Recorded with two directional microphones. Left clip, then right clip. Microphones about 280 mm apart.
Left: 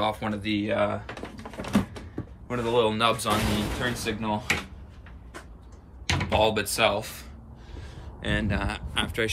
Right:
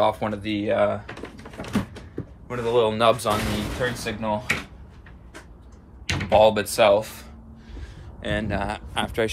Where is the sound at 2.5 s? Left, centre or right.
Centre.